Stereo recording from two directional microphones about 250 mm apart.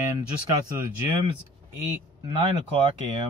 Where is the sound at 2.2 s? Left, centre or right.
Right.